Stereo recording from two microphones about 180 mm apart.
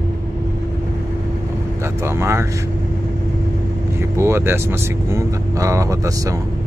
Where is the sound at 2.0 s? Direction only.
15° right (ahead or behind).